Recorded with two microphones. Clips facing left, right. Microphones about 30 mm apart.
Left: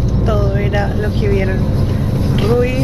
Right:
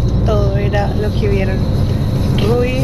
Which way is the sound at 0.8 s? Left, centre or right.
Centre.